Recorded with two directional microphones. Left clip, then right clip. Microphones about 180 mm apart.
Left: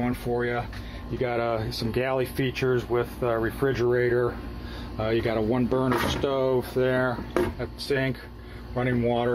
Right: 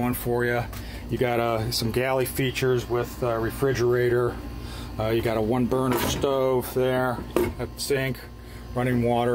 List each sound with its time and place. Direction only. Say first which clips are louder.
0.0 s speech: right 2 dB; 15° right (ahead or behind)